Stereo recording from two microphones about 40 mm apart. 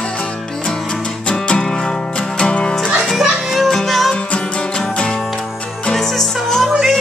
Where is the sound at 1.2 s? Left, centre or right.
Left.